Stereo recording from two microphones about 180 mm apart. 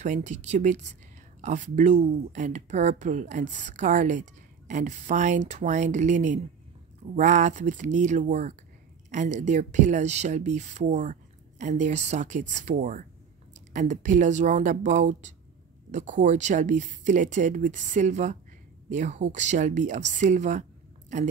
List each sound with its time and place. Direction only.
0.0 s speech: 40° right (ahead or behind)